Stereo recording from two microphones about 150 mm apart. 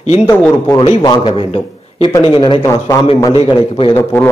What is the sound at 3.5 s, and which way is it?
Speech, 35° left (ahead or behind).